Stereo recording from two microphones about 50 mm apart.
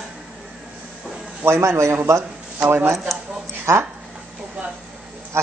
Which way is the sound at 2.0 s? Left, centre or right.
Right.